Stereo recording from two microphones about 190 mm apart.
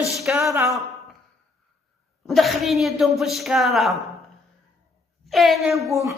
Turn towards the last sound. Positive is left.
turn(degrees=-15)  # may be behind; listen again after turning